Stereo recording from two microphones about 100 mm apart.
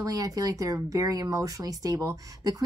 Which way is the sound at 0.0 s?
35° right (ahead or behind).